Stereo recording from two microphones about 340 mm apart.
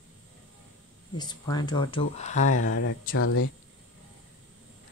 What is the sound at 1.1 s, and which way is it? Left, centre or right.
Speech, centre.